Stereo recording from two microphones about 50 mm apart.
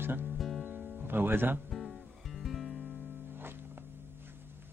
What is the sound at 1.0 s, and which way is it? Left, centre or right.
Speech, right.